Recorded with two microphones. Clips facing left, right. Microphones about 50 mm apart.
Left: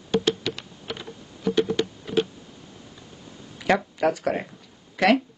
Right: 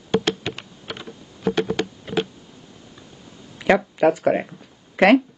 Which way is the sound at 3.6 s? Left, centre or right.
Centre.